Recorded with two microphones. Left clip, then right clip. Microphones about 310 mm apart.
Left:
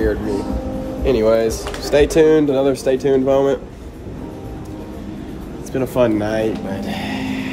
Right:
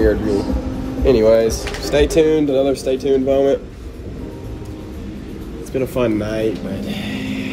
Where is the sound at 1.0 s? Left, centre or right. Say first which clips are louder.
Right 3 dB; centre.